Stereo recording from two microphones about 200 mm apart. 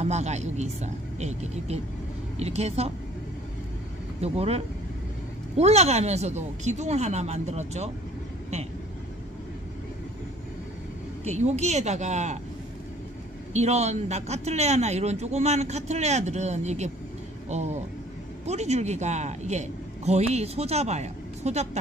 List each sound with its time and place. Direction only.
0.0 s a man's voice: 35° right (ahead or behind)
4.2 s a man's voice: 30° right (ahead or behind)
11.2 s a man's voice: 35° right (ahead or behind)
13.5 s a man's voice: 35° right (ahead or behind)